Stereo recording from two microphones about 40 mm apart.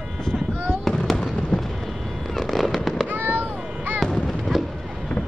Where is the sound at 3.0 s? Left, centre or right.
Right.